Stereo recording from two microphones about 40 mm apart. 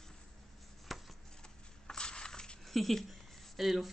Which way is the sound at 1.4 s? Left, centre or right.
Centre.